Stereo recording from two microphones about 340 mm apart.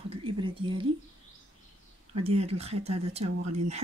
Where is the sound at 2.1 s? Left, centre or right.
Centre.